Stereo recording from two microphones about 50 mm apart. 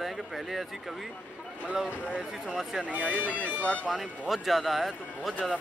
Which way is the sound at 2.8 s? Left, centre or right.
Right.